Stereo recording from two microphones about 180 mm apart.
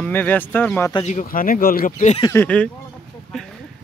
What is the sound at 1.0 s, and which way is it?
Speech, 45° left (ahead or behind).